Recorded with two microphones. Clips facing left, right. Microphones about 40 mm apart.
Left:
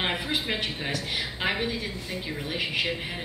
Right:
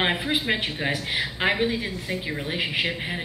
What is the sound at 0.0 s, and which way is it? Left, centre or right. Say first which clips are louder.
A man's voice: right 4 dB; right.